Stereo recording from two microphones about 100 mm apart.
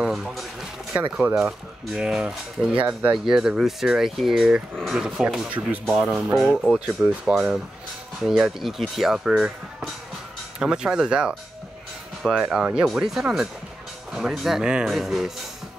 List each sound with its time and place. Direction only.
0.0 s a sound: centre (ahead or behind)
1.3 s speech: 5° right (ahead or behind)
6.6 s speech: 5° right (ahead or behind)